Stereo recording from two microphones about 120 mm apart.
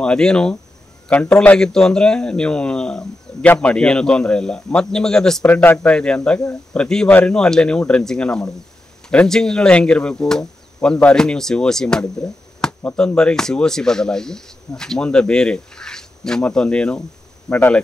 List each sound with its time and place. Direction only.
0.0 s speech: 5° left (ahead or behind)
5.6 s speech: 15° left (ahead or behind)